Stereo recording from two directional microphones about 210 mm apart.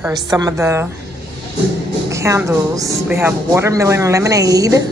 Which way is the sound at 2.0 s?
15° right (ahead or behind).